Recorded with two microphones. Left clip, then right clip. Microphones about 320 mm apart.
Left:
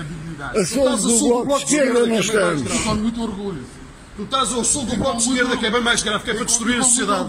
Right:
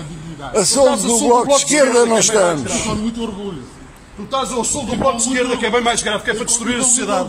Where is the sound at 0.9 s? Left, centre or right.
Right.